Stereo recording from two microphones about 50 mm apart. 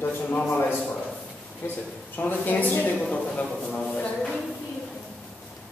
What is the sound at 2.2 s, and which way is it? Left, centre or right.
Speech, left.